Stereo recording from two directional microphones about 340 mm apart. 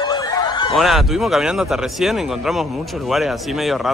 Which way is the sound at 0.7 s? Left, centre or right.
Centre.